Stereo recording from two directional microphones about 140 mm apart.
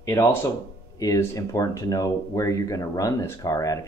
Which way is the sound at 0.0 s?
20° left (ahead or behind).